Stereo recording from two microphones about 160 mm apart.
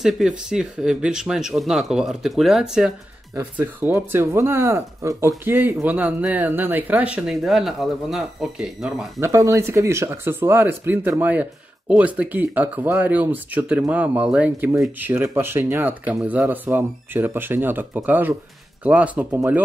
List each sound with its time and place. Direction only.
0.0 s speech: 5° right (ahead or behind)
9.2 s speech: 20° right (ahead or behind)